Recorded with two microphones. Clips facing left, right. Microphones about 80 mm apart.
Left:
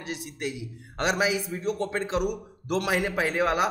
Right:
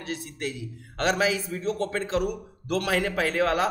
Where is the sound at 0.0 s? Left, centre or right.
Centre.